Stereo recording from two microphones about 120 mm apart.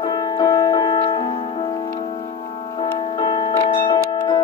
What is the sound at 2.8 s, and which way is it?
Music, 40° left (ahead or behind).